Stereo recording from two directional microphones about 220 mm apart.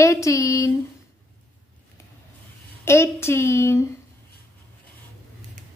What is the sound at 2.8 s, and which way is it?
A woman's voice, 10° left (ahead or behind).